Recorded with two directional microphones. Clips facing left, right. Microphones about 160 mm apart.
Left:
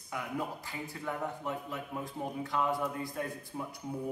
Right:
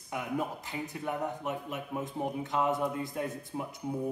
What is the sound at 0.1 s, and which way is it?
Speech, 20° right (ahead or behind).